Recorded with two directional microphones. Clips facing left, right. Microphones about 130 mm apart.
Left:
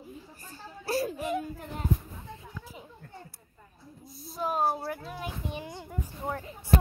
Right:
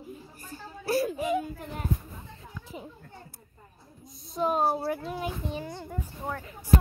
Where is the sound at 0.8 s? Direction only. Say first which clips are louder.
Right 3 dB; 35° left (ahead or behind).